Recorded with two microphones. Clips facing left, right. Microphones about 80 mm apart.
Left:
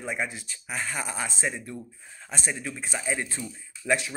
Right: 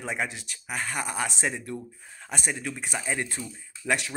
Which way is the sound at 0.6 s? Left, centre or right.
Right.